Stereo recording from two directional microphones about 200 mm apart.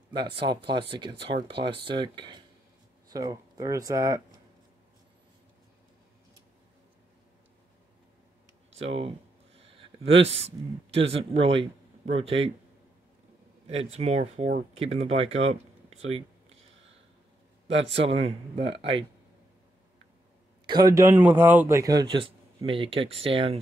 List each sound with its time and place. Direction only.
0.1 s speech: 25° right (ahead or behind)
8.7 s a man's voice: 30° right (ahead or behind)
13.9 s speech: 30° right (ahead or behind)
17.7 s a man's voice: 65° right (ahead or behind)
18.0 s speech: 30° right (ahead or behind)
20.6 s speech: 20° right (ahead or behind)